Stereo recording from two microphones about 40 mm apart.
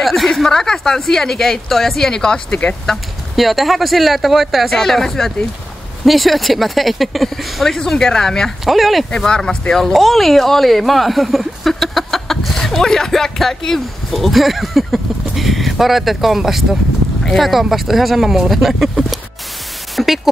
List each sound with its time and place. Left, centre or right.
0.0 s a sound: centre
0.3 s speech: centre
3.3 s speech: centre
7.7 s speech: centre
8.6 s speech: centre
9.5 s speech: centre
9.9 s speech: centre
14.1 s speech: centre
20.0 s static: centre